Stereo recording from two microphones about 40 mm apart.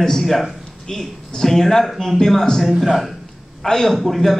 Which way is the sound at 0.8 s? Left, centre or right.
Centre.